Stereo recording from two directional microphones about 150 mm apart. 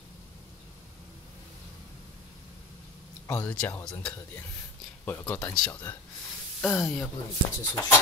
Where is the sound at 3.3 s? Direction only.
10° left (ahead or behind).